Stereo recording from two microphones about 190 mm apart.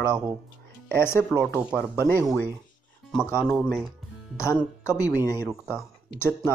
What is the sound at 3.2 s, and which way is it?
Speech, 10° left (ahead or behind).